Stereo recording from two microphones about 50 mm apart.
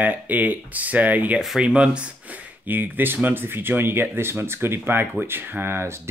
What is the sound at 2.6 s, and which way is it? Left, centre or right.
Speech, right.